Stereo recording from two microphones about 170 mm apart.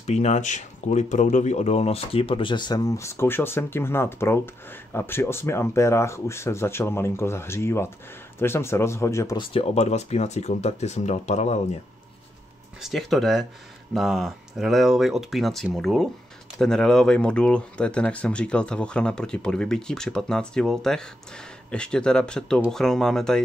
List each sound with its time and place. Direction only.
0.0 s speech: 40° left (ahead or behind); by 9.4 s 15° left (ahead or behind)
9.4 s speech: 35° left (ahead or behind)
12.8 s speech: centre (ahead or behind)